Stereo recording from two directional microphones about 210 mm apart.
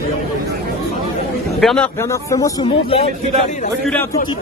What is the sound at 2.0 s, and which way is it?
A man's voice, 15° left (ahead or behind).